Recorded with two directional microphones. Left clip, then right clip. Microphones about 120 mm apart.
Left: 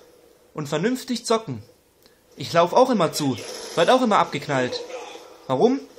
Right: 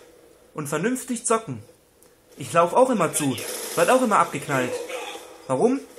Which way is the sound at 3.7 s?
35° left (ahead or behind).